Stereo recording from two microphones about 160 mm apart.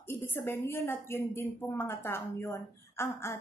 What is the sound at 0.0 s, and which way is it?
A woman's voice, 15° left (ahead or behind).